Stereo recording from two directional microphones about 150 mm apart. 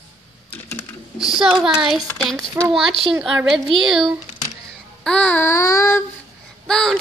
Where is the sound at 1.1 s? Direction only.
5° right (ahead or behind).